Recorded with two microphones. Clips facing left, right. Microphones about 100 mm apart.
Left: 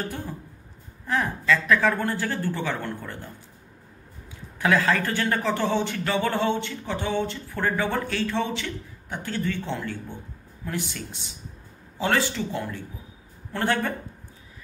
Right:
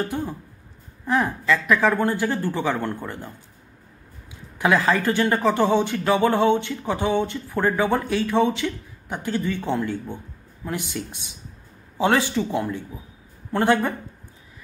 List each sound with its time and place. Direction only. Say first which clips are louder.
1.0 s speech: right 3 dB; 20° right (ahead or behind)
4.6 s speech: right 2 dB; 20° right (ahead or behind)
13.5 s speech: right 5 dB; 20° right (ahead or behind)